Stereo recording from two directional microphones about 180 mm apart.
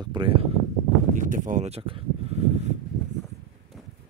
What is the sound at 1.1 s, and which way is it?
Speech, 45° right (ahead or behind).